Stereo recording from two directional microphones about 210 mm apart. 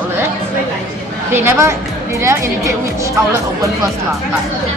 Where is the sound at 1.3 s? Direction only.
10° right (ahead or behind).